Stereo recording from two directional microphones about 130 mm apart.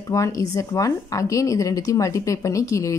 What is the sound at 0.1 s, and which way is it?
Speech, 25° left (ahead or behind).